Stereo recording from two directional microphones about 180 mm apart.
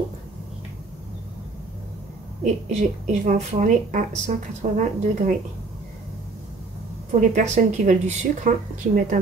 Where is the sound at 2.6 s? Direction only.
45° right (ahead or behind).